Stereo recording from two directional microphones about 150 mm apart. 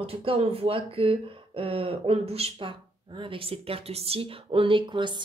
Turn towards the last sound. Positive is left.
turn(degrees=-30)  # may be behind; listen again after turning